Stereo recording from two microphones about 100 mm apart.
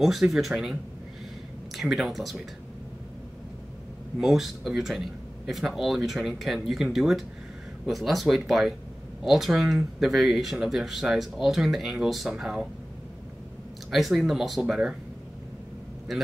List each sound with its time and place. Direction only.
0.0 s speech: centre (ahead or behind)
1.8 s speech: centre (ahead or behind)
4.2 s speech: 5° right (ahead or behind)
13.8 s speech: centre (ahead or behind)
16.1 s speech: centre (ahead or behind)